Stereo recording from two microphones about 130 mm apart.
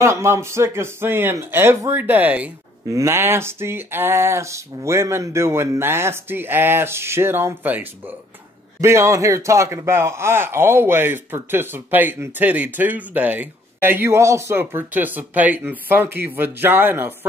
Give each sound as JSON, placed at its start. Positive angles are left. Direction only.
{"t": 0.0, "sound": "a man's voice", "side_deg": -20}
{"t": 8.8, "sound": "a man's voice", "side_deg": -20}